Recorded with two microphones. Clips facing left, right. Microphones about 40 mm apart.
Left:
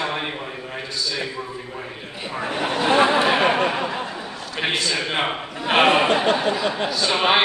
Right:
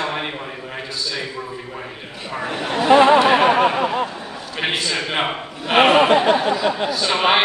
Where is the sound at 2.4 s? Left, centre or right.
Left.